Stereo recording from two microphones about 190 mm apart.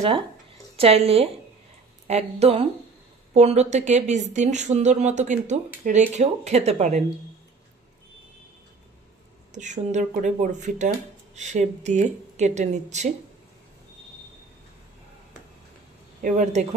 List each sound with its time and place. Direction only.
0.7 s a woman's voice: 30° right (ahead or behind)
9.5 s a woman's voice: 40° right (ahead or behind)
16.2 s speech: 45° right (ahead or behind)